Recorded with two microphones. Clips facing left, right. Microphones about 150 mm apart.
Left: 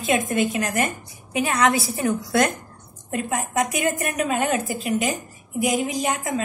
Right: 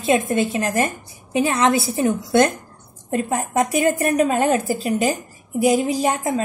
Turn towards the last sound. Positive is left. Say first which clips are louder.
# right 4 dB
turn(degrees=-35)  # may be behind; listen again after turning